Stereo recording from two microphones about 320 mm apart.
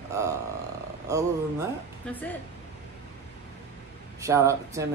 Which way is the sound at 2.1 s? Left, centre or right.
Centre.